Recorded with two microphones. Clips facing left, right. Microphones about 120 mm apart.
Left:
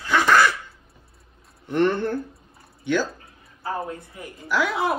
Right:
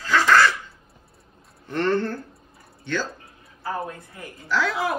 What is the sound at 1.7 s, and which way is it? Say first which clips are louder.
Speech: left 2 dB; 15° left (ahead or behind).